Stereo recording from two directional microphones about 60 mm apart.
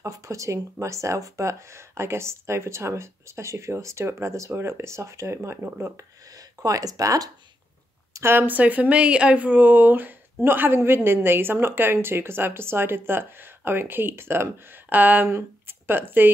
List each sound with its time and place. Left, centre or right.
0.0 s speech: right
6.3 s speech: right
8.1 s speech: right
14.9 s speech: right
15.2 s speech: right